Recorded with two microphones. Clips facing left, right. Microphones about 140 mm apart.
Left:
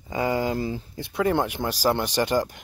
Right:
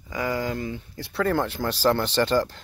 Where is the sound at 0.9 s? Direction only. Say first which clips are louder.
Left 1 dB; 20° left (ahead or behind).